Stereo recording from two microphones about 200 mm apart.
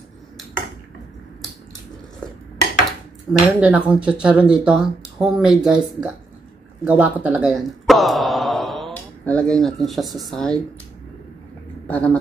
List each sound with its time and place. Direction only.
3.3 s speech: 5° right (ahead or behind)
11.9 s speech: 5° left (ahead or behind)